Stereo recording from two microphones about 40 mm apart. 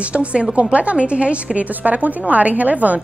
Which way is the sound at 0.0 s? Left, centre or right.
Right.